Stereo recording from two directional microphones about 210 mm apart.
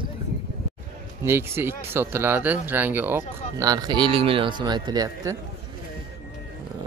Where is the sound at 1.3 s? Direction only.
10° right (ahead or behind).